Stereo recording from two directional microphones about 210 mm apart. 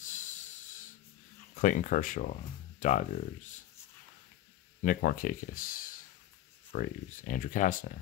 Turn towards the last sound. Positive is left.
turn(degrees=40)  # may be behind; listen again after turning